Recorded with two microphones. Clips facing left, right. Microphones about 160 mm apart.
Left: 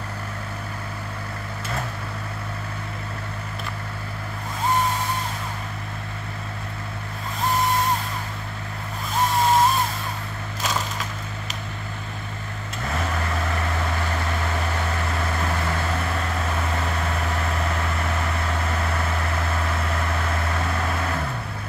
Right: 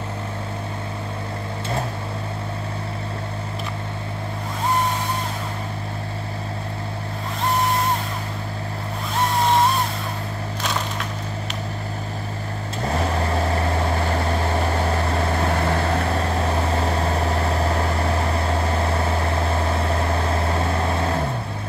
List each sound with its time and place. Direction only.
12.8 s vehicle: 30° right (ahead or behind)